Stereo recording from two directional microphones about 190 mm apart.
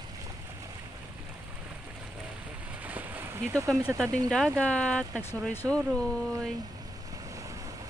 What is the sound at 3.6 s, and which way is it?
Speech, centre (ahead or behind).